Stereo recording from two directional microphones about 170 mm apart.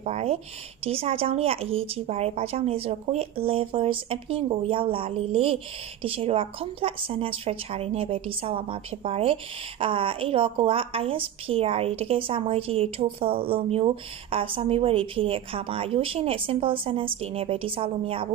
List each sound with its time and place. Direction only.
0.0 s a woman's voice: 35° right (ahead or behind)